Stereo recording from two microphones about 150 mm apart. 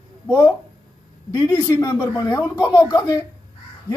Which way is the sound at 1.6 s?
20° left (ahead or behind).